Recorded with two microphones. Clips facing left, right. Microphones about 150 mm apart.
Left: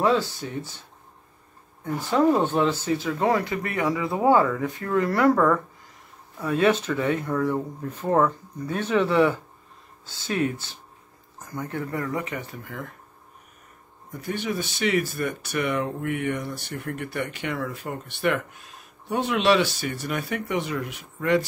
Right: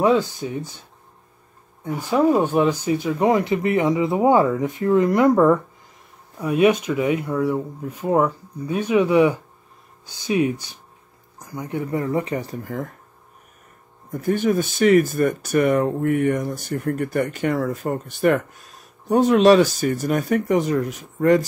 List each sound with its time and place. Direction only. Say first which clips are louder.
0.0 s speech: right 4 dB; 15° right (ahead or behind)
1.9 s speech: right 2 dB; 10° right (ahead or behind); by 12.9 s 40° right (ahead or behind)
14.1 s speech: right 9 dB; 45° right (ahead or behind)